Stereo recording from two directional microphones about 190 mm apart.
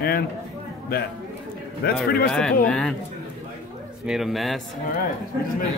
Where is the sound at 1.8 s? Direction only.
55° left (ahead or behind).